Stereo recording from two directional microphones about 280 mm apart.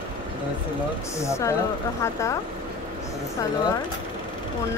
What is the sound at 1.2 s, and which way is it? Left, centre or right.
Speech, centre.